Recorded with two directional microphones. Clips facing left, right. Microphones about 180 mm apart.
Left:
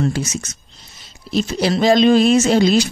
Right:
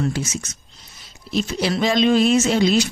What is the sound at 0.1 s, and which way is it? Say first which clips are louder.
Speech: left 3 dB; 40° left (ahead or behind).